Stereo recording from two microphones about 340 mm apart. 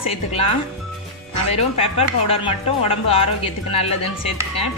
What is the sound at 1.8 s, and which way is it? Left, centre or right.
Speech, centre.